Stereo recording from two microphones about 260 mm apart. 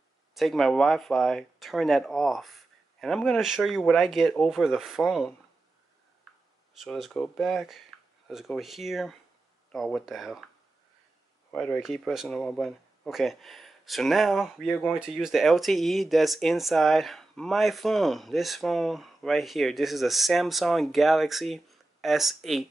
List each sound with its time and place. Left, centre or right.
0.3 s speech: centre
6.8 s speech: centre
11.5 s speech: centre